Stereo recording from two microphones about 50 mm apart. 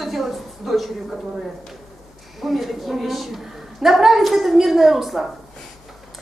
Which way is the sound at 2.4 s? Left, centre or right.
Centre.